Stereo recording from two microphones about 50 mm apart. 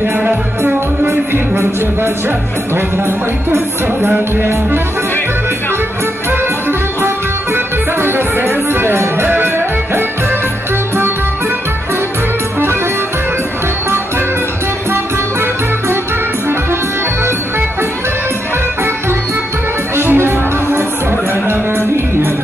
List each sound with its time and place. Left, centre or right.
0.0 s music: right
2.2 s music: right
7.5 s music: right
20.0 s music: right